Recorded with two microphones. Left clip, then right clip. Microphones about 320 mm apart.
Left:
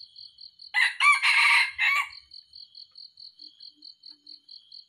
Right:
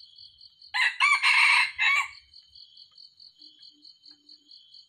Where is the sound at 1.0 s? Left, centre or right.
Centre.